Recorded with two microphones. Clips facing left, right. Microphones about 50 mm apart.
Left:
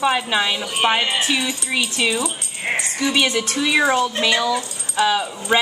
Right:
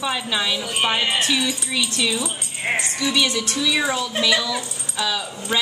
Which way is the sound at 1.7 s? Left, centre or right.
Left.